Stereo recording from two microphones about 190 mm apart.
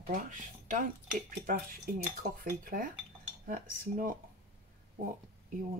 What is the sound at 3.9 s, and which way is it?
Speech, 50° right (ahead or behind).